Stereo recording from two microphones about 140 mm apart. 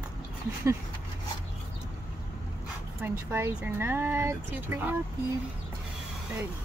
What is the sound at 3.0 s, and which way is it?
Speech, 15° right (ahead or behind).